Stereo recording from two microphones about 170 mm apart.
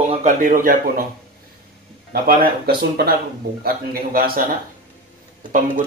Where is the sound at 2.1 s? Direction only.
60° right (ahead or behind).